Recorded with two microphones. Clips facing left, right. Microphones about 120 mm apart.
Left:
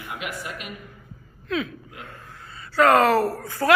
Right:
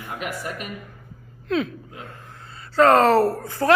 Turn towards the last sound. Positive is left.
turn(degrees=-30)  # may be behind; listen again after turning